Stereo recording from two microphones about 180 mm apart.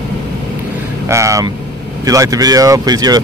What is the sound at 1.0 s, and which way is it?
Speech, 15° right (ahead or behind).